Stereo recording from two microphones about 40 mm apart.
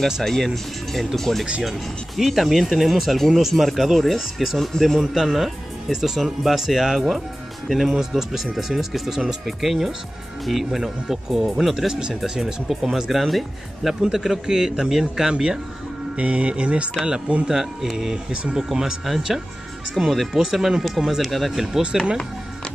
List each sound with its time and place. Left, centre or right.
0.2 s a man's voice: centre
5.2 s speech: centre
16.2 s speech: right
17.8 s speech: centre